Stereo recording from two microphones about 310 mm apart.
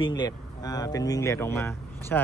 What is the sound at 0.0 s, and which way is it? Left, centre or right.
Speech, centre.